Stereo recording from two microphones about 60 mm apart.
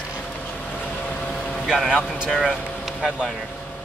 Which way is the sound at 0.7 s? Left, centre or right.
Centre.